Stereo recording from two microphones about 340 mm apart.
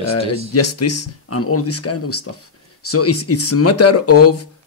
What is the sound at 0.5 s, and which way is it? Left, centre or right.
Speech, left.